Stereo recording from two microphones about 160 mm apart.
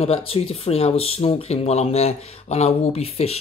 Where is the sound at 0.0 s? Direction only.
40° left (ahead or behind).